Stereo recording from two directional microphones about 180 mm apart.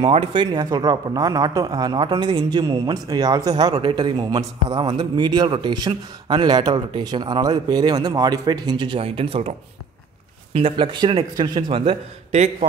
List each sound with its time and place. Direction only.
0.0 s a man's voice: 25° right (ahead or behind)
10.5 s a man's voice: 30° right (ahead or behind)